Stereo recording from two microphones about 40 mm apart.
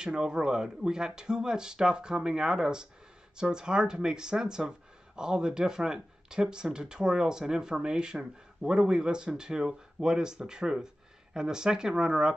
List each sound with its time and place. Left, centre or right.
0.0 s speech: centre